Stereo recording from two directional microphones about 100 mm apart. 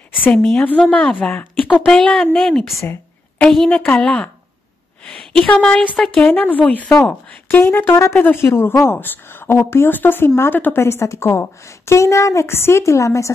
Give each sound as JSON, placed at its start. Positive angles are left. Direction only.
{"t": 0.2, "sound": "a woman's voice", "side_deg": 10}